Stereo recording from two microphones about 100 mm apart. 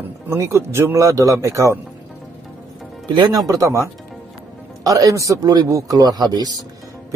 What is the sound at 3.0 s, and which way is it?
Speech, 45° right (ahead or behind).